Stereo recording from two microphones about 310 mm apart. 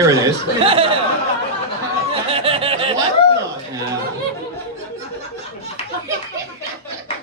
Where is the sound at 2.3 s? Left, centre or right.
Centre.